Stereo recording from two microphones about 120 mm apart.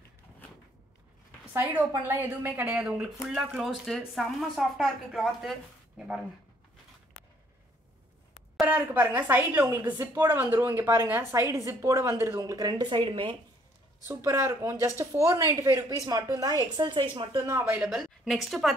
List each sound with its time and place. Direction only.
1.5 s a woman's voice: 15° right (ahead or behind)
8.6 s speech: 15° right (ahead or behind)
12.4 s speech: 30° right (ahead or behind)
14.0 s speech: 25° right (ahead or behind)
16.7 s speech: 40° right (ahead or behind)
17.6 s a woman's voice: 5° right (ahead or behind)